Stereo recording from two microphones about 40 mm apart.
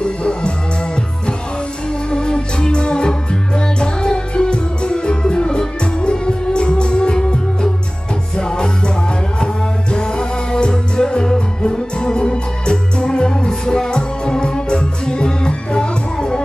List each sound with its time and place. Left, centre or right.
0.0 s music: left
2.0 s music: left
9.9 s music: centre